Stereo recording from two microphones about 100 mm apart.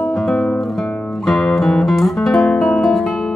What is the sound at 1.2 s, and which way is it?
Guitar, centre (ahead or behind).